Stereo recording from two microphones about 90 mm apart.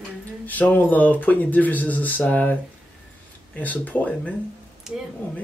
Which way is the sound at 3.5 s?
15° left (ahead or behind).